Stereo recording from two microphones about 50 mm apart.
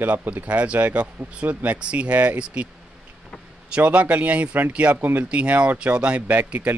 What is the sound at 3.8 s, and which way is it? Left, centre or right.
Speech, right.